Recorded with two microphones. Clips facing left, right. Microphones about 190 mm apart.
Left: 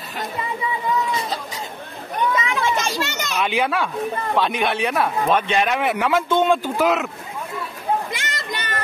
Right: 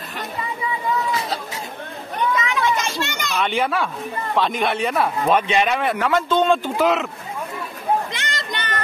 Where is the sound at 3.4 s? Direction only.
Centre (ahead or behind).